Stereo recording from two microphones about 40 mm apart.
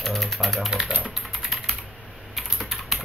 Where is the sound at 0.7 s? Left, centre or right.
Centre.